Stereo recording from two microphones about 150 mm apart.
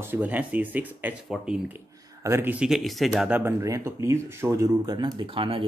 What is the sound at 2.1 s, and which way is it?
Speech, 20° right (ahead or behind).